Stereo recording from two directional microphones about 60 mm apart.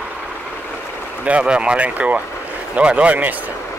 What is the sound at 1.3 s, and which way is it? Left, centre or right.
Speech, centre.